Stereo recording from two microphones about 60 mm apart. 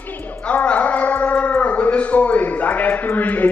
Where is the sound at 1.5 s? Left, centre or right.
Left.